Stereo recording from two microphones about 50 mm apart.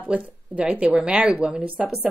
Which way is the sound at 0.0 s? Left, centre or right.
Right.